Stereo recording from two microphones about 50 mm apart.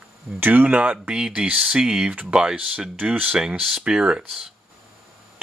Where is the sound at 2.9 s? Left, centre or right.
Right.